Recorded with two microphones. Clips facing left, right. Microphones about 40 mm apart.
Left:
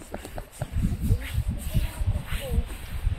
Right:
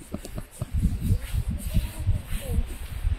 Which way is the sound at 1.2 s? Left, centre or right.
Left.